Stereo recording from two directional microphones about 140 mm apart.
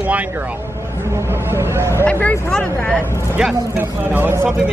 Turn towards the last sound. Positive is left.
turn(degrees=-15)  # may be behind; listen again after turning